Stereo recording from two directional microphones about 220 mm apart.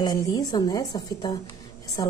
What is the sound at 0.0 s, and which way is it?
A woman's voice, 15° left (ahead or behind).